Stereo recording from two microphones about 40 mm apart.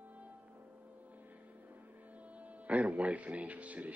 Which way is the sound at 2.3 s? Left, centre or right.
Right.